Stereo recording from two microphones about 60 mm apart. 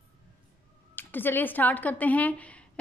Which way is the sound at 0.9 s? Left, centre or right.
Left.